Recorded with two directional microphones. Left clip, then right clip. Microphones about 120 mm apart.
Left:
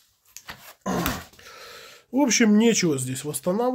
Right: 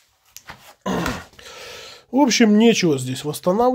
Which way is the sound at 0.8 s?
80° right.